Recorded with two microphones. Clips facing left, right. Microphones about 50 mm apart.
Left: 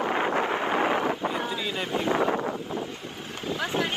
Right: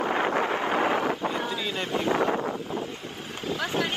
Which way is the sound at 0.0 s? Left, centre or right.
Centre.